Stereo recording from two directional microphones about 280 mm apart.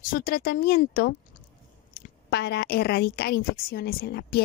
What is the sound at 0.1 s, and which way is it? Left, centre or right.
A woman's voice, left.